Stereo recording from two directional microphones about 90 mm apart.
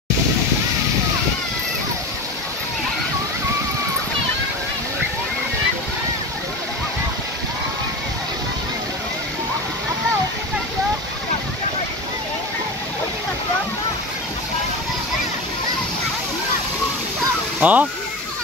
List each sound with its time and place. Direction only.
17.6 s speech: 15° right (ahead or behind)